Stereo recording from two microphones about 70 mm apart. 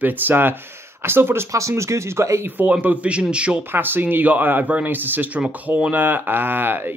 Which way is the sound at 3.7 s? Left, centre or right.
Right.